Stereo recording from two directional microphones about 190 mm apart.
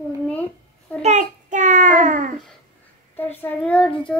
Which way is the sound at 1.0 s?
40° right (ahead or behind).